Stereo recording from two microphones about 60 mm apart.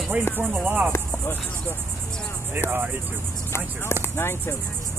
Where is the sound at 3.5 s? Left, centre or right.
Left.